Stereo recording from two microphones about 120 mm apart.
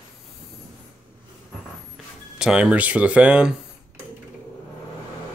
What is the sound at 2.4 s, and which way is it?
Speech, 5° right (ahead or behind).